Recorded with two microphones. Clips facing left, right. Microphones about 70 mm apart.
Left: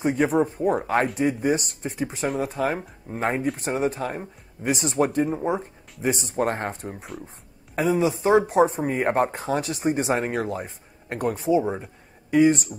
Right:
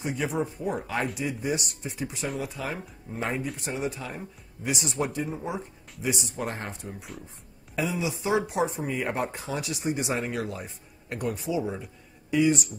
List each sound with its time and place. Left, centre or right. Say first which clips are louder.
0.0 s speech: left 8 dB; left
6.0 s speech: left 7 dB; left